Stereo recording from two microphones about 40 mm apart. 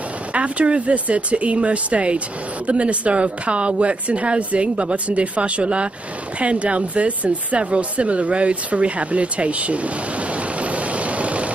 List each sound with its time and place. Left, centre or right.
0.3 s speech: right
10.6 s vehicle: right